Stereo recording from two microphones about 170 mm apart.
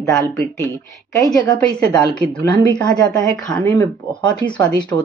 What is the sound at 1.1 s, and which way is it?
A woman's voice, 20° left (ahead or behind).